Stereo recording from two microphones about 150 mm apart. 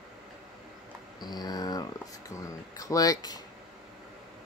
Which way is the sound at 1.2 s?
25° left (ahead or behind).